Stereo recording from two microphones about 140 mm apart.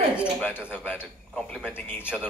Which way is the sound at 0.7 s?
10° left (ahead or behind).